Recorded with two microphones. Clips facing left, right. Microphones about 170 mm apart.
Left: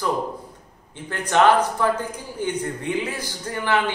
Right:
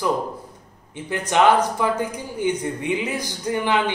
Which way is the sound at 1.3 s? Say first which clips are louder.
Even; 15° right (ahead or behind).